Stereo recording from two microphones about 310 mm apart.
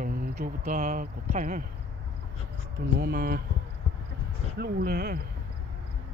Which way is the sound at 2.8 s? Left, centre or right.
Right.